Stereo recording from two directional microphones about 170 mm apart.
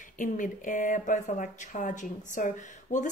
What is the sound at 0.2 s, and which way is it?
Speech, 50° left (ahead or behind).